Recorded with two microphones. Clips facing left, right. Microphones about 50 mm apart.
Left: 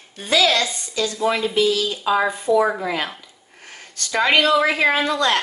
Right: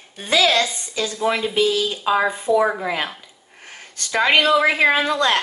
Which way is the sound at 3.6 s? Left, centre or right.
Right.